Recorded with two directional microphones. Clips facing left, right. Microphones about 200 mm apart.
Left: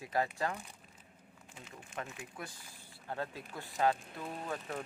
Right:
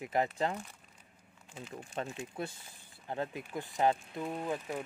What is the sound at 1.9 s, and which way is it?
Speech, 30° right (ahead or behind).